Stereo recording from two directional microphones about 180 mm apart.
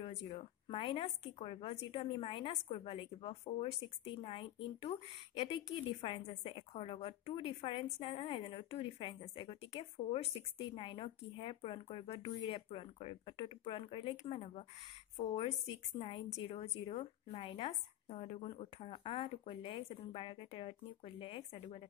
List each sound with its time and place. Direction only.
0.0 s a woman's voice: 35° left (ahead or behind)